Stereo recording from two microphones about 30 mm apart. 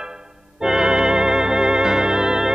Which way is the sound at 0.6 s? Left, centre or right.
Centre.